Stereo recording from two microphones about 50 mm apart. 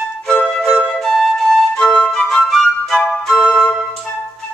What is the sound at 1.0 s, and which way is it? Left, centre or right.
Flute, centre.